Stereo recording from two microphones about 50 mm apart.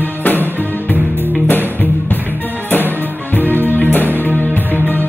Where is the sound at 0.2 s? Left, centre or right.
Left.